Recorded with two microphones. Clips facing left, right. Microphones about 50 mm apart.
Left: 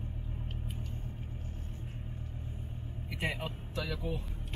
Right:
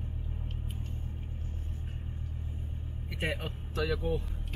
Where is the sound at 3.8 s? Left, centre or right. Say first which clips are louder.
Right 7 dB; right.